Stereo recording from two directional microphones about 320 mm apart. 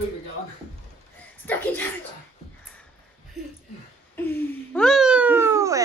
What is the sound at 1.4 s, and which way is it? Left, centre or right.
Speech, centre.